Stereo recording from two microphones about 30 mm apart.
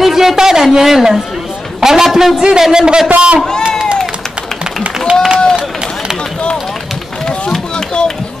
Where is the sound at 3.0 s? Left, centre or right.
Right.